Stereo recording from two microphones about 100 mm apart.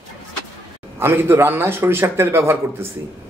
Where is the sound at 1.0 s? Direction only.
25° right (ahead or behind).